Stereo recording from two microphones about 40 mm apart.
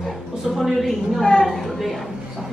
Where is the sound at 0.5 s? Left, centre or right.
Centre.